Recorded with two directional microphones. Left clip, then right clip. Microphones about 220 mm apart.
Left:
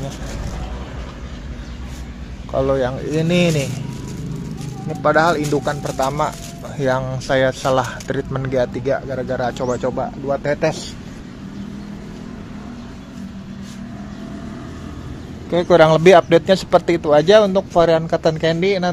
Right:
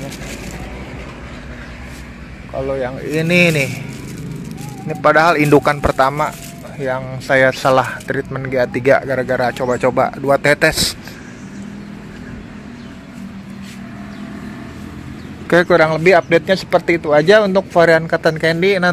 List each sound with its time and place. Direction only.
2.5 s speech: 20° left (ahead or behind); by 3.6 s centre (ahead or behind)
4.8 s speech: 5° right (ahead or behind)
5.5 s speech: 25° right (ahead or behind)
6.8 s speech: 15° left (ahead or behind)
7.2 s speech: centre (ahead or behind)
8.7 s speech: 5° right (ahead or behind)
9.8 s speech: 15° right (ahead or behind)
15.7 s speech: 10° left (ahead or behind)